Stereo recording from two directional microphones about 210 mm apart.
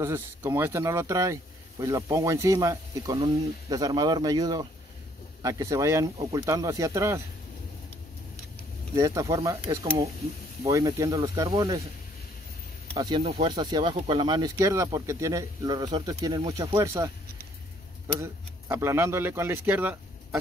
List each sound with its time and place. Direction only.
0.0 s speech: 10° right (ahead or behind)
8.9 s speech: 15° right (ahead or behind)
12.9 s speech: 15° right (ahead or behind)